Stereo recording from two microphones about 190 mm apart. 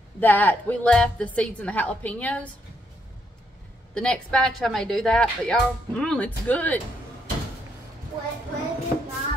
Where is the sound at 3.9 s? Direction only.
5° left (ahead or behind).